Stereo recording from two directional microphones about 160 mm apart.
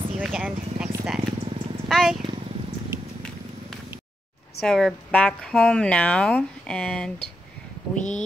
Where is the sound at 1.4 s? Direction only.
35° right (ahead or behind).